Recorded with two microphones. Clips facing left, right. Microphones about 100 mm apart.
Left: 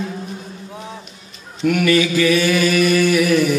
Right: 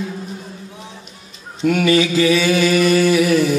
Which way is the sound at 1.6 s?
25° right (ahead or behind).